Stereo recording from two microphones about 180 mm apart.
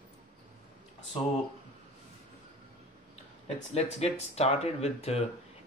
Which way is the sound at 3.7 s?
35° left (ahead or behind).